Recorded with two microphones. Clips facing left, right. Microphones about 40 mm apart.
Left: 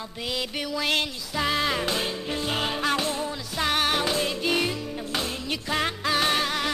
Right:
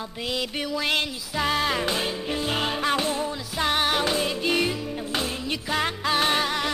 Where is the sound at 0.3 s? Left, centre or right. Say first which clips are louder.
Right 1 dB; centre.